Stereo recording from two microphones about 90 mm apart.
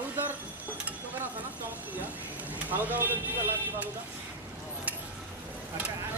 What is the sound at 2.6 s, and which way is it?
Speech, 20° right (ahead or behind).